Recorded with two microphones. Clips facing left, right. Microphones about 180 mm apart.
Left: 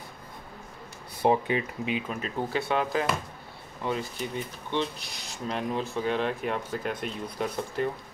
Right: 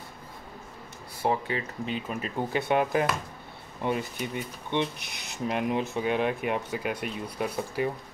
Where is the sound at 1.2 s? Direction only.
20° left (ahead or behind).